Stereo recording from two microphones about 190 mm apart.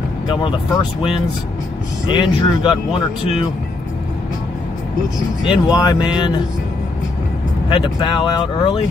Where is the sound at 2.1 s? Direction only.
25° left (ahead or behind).